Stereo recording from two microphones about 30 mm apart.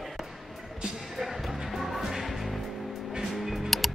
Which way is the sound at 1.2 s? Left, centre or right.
Centre.